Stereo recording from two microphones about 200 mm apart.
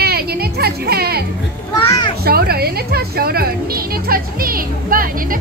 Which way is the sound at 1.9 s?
20° left (ahead or behind).